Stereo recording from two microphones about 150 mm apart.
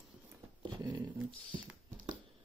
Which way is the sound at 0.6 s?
30° right (ahead or behind).